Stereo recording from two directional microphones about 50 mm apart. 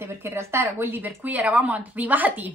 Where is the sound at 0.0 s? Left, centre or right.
Right.